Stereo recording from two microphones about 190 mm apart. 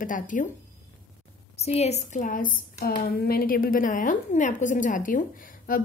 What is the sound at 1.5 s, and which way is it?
Speech, 35° left (ahead or behind).